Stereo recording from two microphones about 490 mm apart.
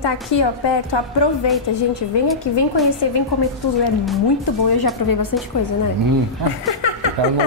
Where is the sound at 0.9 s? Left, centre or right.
Left.